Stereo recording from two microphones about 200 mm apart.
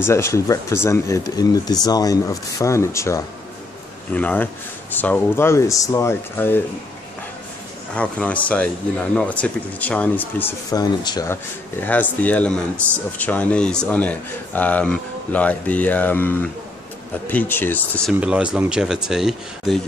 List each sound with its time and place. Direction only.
0.0 s speech: 15° left (ahead or behind)
7.9 s speech: 5° left (ahead or behind)
11.8 s speech: 10° left (ahead or behind)
18.2 s speech: 5° right (ahead or behind)